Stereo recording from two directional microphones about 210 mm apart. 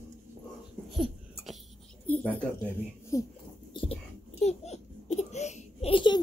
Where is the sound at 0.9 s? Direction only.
Centre (ahead or behind).